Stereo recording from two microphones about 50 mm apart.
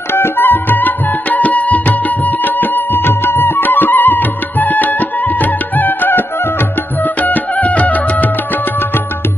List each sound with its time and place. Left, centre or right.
0.1 s music: left